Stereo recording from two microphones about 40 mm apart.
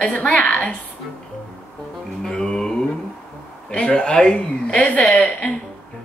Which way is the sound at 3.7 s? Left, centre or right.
Left.